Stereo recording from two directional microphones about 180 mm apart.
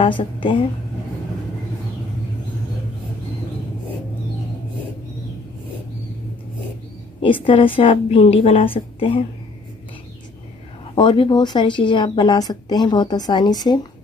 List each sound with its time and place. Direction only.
0.0 s speech: 30° left (ahead or behind)
7.2 s a woman's voice: 30° left (ahead or behind)
11.0 s speech: 25° left (ahead or behind)